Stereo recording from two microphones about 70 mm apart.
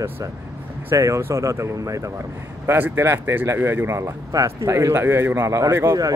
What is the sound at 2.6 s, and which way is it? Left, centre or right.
A man's voice, right.